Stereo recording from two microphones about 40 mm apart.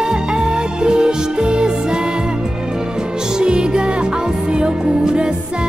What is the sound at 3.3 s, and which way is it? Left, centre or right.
Music, right.